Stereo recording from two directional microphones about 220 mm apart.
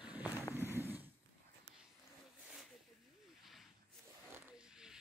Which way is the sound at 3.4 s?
Centre (ahead or behind).